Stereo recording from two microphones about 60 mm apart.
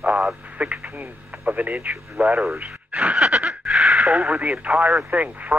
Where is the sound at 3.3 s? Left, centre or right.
Centre.